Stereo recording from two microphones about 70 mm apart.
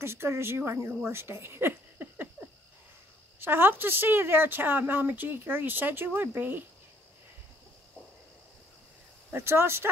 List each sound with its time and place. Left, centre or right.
0.0 s speech: right
1.1 s a sound: right
3.3 s speech: right
9.3 s speech: right